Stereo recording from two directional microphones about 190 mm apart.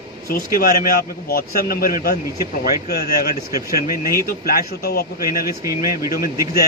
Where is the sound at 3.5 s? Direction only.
20° right (ahead or behind).